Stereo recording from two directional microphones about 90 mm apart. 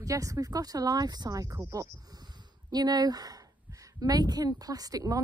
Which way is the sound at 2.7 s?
45° right (ahead or behind).